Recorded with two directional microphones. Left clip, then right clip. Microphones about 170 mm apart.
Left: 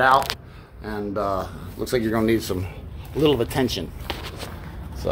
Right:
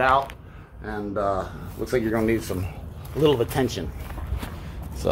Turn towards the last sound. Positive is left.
turn(degrees=-20)  # may be behind; listen again after turning